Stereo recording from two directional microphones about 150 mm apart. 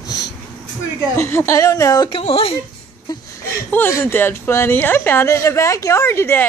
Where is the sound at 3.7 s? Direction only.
15° left (ahead or behind).